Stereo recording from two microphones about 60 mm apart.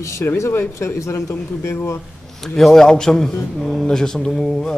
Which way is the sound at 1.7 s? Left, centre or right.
Left.